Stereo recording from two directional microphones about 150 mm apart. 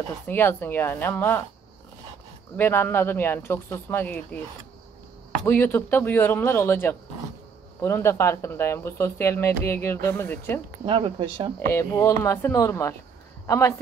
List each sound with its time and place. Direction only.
0.3 s speech: 15° left (ahead or behind)
2.5 s speech: 15° left (ahead or behind)
5.4 s speech: 10° left (ahead or behind)
10.9 s speech: 35° right (ahead or behind)
11.7 s speech: 20° left (ahead or behind)